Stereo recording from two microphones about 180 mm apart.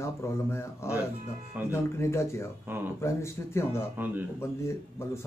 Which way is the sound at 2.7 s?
10° right (ahead or behind).